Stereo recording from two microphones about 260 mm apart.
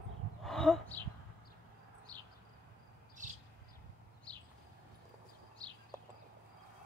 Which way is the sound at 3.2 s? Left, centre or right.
Right.